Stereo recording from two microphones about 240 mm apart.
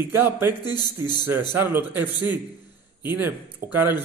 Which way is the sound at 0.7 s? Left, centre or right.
Centre.